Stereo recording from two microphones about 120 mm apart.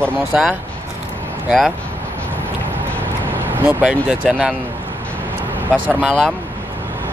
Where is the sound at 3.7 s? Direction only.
10° right (ahead or behind).